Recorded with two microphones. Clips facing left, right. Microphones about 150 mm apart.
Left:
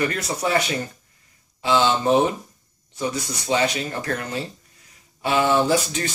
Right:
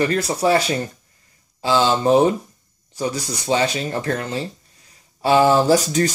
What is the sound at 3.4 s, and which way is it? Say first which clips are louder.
Speech: right 2 dB; 30° right (ahead or behind).